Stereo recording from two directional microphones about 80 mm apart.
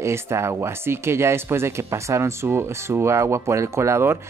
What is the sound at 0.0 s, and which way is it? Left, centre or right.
Speech, right.